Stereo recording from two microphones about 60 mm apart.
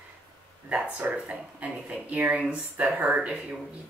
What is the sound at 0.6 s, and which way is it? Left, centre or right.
Speech, right.